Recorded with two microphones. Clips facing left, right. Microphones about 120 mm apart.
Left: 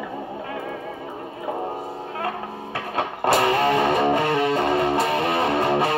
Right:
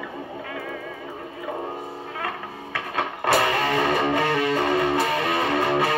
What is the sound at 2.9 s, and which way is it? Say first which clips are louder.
Music: left 1 dB; 25° left (ahead or behind).